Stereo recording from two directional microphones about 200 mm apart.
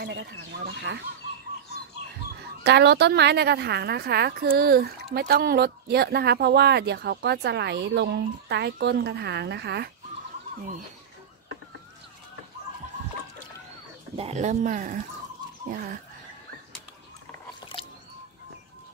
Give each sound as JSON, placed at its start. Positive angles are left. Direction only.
{"t": 0.0, "sound": "a woman's voice", "side_deg": -60}
{"t": 2.6, "sound": "a woman's voice", "side_deg": -55}
{"t": 14.1, "sound": "speech", "side_deg": -35}
{"t": 17.7, "sound": "a sound", "side_deg": 25}